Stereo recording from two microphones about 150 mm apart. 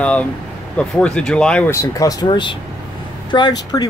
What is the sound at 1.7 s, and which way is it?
Speech, 20° left (ahead or behind).